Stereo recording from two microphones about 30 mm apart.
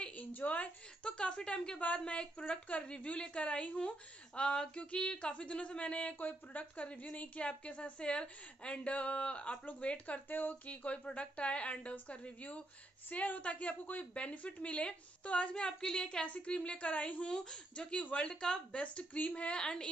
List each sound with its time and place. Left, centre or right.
0.1 s a sound: left
1.0 s a woman's voice: left
6.1 s speech: left
6.6 s a woman's voice: left
9.8 s a woman's voice: left
10.3 s speech: left
10.9 s a woman's voice: left
11.9 s a woman's voice: left
13.1 s speech: left
13.4 s a woman's voice: left
16.3 s a woman's voice: left
17.3 s speech: left
19.1 s a woman's voice: left
19.5 s speech: left